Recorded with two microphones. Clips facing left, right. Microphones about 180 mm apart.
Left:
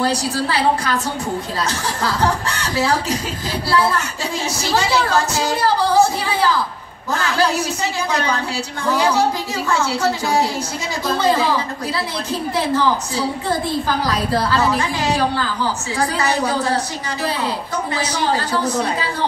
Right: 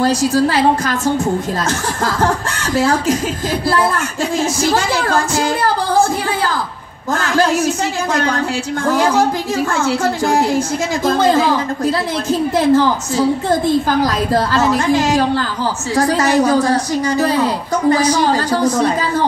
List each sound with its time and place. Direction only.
0.0 s a woman's voice: 45° right (ahead or behind)
2.0 s a woman's voice: 50° right (ahead or behind)